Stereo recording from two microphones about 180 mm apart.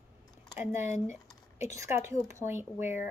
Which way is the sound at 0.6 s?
15° right (ahead or behind).